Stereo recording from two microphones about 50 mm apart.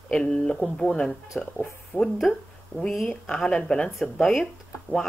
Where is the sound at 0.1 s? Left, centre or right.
Centre.